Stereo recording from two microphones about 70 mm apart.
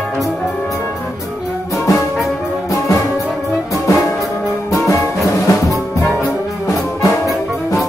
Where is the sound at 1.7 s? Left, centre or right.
Left.